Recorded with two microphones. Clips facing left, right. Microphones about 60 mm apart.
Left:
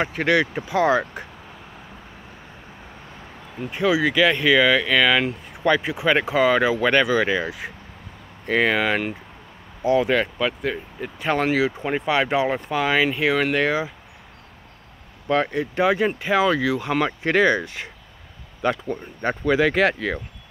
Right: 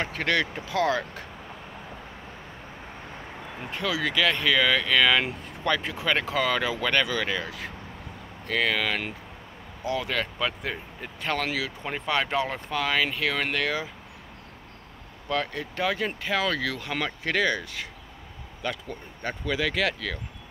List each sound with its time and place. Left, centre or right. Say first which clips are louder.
0.0 s speech: left 6 dB; centre
3.7 s speech: left 7 dB; centre
8.5 s speech: left 6 dB; left
10.4 s speech: left 6 dB; centre
11.2 s speech: left 8 dB; left
11.8 s speech: left 6 dB; centre
15.2 s speech: left 7 dB; left